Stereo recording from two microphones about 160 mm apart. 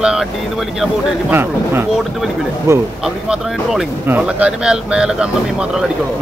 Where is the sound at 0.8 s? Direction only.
10° right (ahead or behind).